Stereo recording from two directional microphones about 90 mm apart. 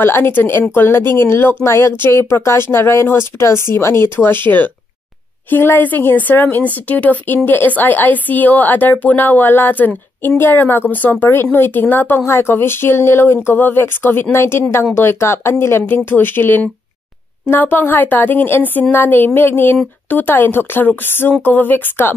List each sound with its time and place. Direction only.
0.0 s a woman's voice: 25° left (ahead or behind)